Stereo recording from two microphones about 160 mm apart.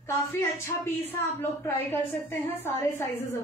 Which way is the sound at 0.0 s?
15° left (ahead or behind).